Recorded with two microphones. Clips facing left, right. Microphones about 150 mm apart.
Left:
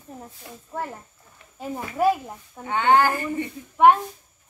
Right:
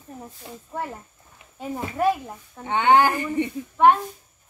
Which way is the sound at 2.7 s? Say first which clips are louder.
Right 1 dB; 15° right (ahead or behind).